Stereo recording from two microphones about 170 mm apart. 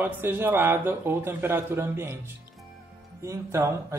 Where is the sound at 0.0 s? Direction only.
10° right (ahead or behind).